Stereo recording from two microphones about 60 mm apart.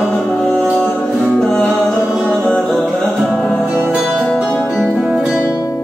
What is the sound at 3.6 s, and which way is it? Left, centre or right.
Music, right.